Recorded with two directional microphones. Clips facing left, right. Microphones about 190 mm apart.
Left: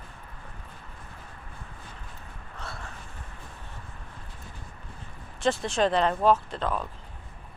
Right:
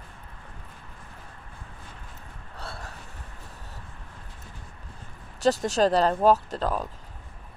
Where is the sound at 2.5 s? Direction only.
35° right (ahead or behind).